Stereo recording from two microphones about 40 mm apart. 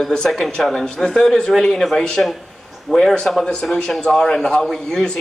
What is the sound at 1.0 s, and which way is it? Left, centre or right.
A man's voice, centre.